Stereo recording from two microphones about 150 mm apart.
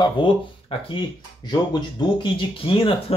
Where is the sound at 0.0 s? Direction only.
35° left (ahead or behind).